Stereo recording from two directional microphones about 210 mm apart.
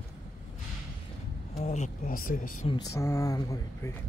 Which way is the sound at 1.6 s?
35° left (ahead or behind).